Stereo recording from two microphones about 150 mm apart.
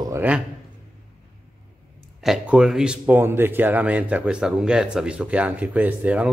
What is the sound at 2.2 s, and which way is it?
Speech, 5° right (ahead or behind).